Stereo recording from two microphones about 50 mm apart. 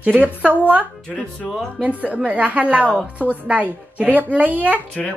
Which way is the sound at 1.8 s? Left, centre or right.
Right.